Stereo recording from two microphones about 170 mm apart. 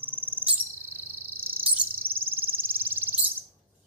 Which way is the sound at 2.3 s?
15° right (ahead or behind).